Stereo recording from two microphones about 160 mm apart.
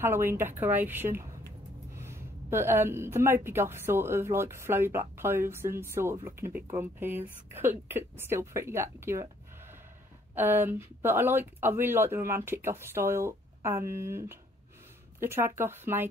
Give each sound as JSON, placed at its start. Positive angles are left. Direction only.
{"t": 0.0, "sound": "a woman's voice", "side_deg": -15}
{"t": 10.3, "sound": "a woman's voice", "side_deg": -10}